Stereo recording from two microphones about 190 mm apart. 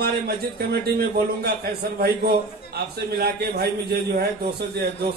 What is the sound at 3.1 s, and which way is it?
Speech, 55° right (ahead or behind).